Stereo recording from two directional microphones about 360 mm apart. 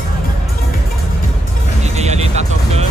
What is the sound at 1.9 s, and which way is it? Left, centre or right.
Music, centre.